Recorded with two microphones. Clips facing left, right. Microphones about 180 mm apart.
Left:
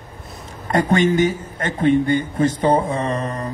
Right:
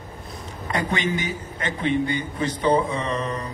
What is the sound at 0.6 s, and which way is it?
A man's voice, 45° left (ahead or behind).